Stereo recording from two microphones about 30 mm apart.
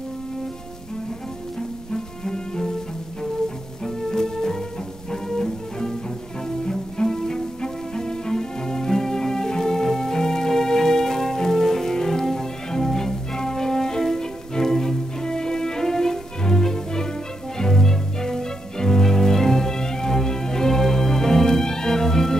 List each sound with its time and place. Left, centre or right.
1.9 s cello: centre
5.1 s music: centre
6.6 s cello: left
17.6 s music: centre